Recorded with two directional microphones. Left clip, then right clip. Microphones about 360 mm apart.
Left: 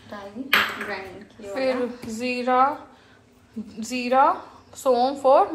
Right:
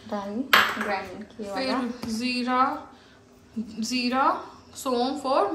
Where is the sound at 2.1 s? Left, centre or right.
Centre.